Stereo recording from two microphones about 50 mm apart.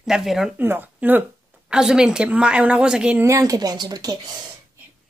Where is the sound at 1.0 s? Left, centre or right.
Right.